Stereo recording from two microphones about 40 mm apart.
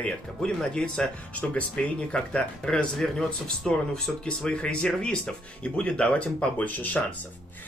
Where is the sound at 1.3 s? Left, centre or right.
Left.